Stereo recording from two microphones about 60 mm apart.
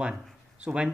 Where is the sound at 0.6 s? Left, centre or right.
Centre.